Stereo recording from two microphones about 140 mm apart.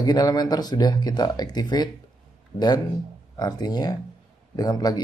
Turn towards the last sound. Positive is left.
turn(degrees=30)  # may be behind; listen again after turning